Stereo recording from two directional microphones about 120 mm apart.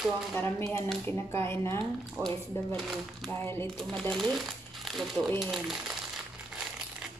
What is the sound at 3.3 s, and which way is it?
Speech, 20° left (ahead or behind).